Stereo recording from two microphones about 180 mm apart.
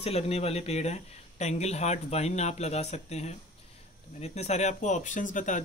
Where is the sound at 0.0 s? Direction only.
35° left (ahead or behind).